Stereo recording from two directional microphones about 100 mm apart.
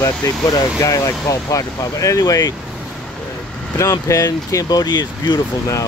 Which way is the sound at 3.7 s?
30° left (ahead or behind).